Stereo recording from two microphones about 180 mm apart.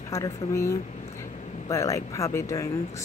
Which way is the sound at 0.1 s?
15° left (ahead or behind).